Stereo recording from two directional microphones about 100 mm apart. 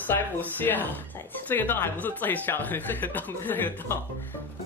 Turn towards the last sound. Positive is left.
turn(degrees=20)  # may be behind; listen again after turning